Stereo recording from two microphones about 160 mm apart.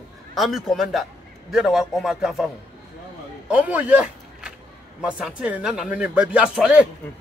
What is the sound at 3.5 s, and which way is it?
Speech, 10° right (ahead or behind).